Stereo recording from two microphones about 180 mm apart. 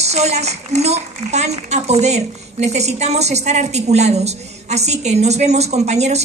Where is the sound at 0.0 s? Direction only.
35° right (ahead or behind).